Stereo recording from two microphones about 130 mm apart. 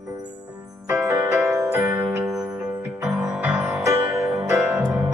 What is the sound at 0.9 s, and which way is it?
Music, 20° right (ahead or behind).